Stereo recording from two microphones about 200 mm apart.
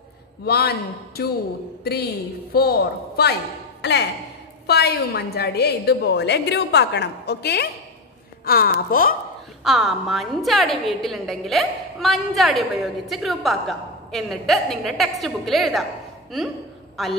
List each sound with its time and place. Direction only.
0.5 s a woman's voice: 50° left (ahead or behind)
2.5 s a woman's voice: 50° left (ahead or behind)
9.6 s a woman's voice: centre (ahead or behind)